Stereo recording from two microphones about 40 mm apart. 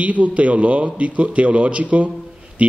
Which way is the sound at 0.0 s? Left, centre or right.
Right.